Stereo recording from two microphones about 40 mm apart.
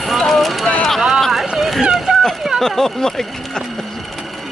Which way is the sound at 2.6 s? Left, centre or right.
Centre.